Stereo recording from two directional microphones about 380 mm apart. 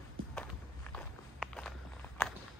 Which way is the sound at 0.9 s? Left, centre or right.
Centre.